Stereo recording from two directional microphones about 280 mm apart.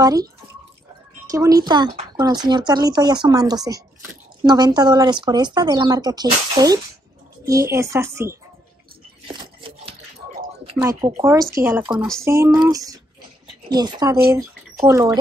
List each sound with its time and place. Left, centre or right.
0.0 s speech: centre
1.3 s speech: centre
9.3 s a sound: centre
10.8 s speech: centre
12.3 s speech: centre